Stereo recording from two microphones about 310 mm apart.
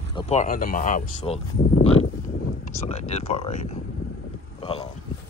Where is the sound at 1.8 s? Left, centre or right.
Centre.